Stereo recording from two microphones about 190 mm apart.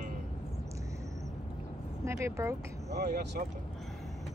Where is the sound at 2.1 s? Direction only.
15° right (ahead or behind).